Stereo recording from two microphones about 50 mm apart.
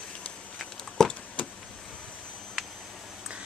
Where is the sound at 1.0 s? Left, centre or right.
Centre.